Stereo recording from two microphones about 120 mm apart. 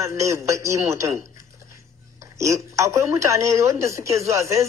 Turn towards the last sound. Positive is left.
turn(degrees=-25)  # may be behind; listen again after turning